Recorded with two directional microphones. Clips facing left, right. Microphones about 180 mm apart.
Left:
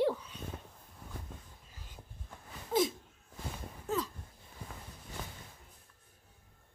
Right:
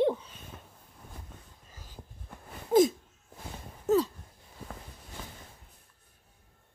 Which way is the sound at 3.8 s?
35° right (ahead or behind).